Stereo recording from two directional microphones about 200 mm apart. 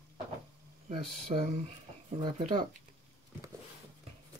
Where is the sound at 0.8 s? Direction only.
35° right (ahead or behind).